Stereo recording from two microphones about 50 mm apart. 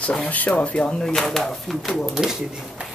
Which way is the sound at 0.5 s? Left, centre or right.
Left.